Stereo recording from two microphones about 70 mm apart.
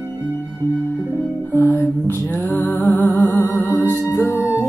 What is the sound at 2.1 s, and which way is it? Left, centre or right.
Music, left.